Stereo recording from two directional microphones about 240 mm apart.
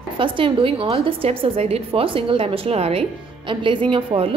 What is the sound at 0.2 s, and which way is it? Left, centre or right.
A woman's voice, right.